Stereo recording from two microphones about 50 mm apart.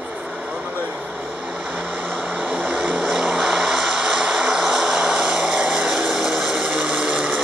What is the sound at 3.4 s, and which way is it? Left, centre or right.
Vehicle, centre.